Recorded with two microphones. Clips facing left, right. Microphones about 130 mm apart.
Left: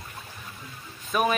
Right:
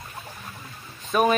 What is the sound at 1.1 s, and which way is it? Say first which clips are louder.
Speech: right 4 dB; 5° left (ahead or behind).